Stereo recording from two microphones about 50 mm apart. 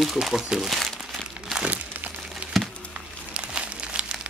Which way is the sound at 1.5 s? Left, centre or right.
Right.